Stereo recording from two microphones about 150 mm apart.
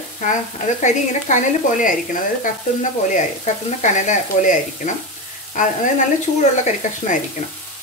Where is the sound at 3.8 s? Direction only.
55° left (ahead or behind).